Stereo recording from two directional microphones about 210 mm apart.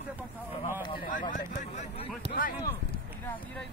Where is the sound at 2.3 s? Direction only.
45° left (ahead or behind).